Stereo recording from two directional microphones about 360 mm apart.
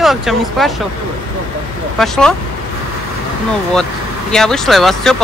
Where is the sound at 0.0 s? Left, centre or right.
Centre.